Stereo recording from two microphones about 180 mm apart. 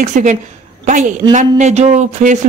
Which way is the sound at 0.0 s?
45° right (ahead or behind).